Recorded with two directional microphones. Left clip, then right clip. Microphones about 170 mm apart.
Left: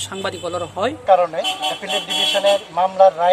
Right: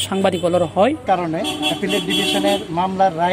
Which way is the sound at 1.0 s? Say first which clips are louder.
Left 4 dB; 15° left (ahead or behind).